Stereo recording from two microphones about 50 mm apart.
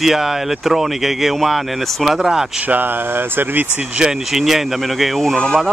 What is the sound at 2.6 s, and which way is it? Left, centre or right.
Speech, right.